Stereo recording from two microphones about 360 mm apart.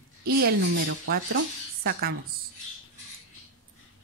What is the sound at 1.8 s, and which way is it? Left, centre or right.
Speech, right.